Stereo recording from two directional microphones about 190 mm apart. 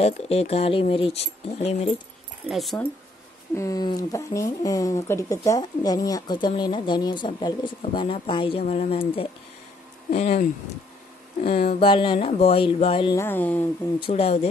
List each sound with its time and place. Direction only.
0.0 s speech: 30° left (ahead or behind)
2.4 s speech: centre (ahead or behind)
3.5 s speech: 20° left (ahead or behind); by 10.4 s 35° left (ahead or behind)
11.8 s speech: 25° left (ahead or behind)
13.1 s speech: 10° left (ahead or behind)
13.9 s speech: 30° left (ahead or behind)